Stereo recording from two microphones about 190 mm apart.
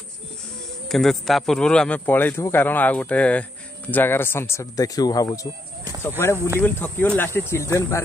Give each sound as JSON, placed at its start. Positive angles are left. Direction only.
{"t": 0.8, "sound": "speech", "side_deg": 0}